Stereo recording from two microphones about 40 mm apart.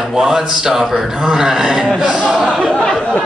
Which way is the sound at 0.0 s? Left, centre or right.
Centre.